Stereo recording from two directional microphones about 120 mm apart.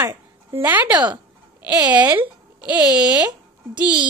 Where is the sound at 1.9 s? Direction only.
15° right (ahead or behind).